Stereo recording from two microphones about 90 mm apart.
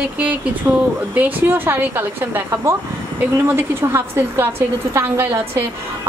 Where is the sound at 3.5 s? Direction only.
25° right (ahead or behind).